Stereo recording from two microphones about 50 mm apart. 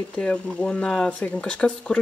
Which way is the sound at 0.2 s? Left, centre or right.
Left.